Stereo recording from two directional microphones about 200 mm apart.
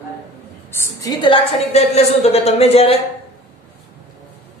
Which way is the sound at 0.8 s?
15° left (ahead or behind).